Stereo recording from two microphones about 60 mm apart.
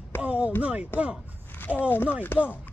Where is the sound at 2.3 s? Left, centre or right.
Left.